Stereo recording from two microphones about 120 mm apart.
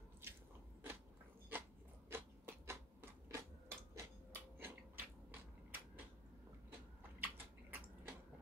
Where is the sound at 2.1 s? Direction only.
20° right (ahead or behind).